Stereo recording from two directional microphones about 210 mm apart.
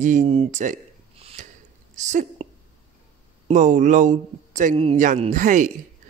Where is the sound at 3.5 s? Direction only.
35° right (ahead or behind).